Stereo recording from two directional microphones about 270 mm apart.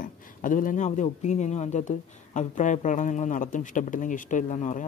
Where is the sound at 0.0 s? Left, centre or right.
Left.